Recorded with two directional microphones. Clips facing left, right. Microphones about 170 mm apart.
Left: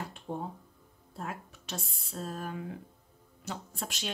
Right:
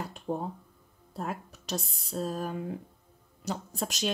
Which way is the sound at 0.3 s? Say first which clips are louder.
Right 5 dB; 45° right (ahead or behind).